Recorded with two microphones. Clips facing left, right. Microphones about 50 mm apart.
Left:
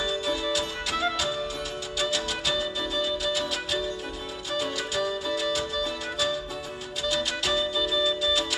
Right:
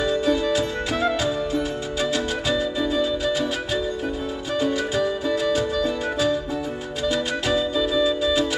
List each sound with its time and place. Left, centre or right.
0.0 s music: right